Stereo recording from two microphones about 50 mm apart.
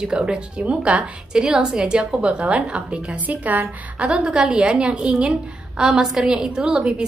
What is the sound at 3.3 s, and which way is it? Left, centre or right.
A woman's voice, right.